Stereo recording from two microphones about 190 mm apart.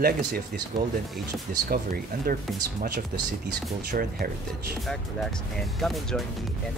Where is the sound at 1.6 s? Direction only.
50° right (ahead or behind).